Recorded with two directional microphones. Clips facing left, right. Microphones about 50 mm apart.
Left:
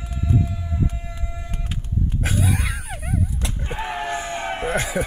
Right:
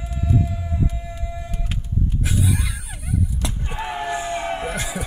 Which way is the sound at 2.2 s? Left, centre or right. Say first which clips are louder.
Left 1 dB; left.